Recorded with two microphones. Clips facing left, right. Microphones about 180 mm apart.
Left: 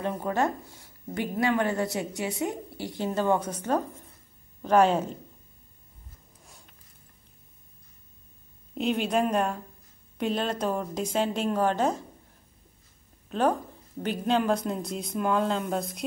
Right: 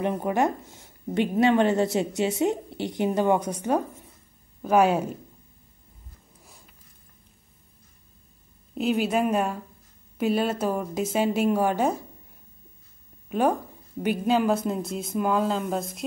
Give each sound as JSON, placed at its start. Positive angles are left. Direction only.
{"t": 0.0, "sound": "a woman's voice", "side_deg": -15}
{"t": 6.4, "sound": "a sound", "side_deg": 0}
{"t": 8.7, "sound": "a woman's voice", "side_deg": -5}
{"t": 13.3, "sound": "a woman's voice", "side_deg": -10}